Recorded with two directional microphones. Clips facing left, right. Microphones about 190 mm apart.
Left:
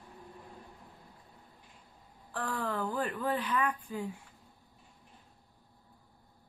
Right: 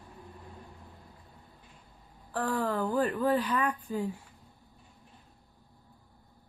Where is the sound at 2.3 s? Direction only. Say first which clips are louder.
Right 5 dB; 35° right (ahead or behind).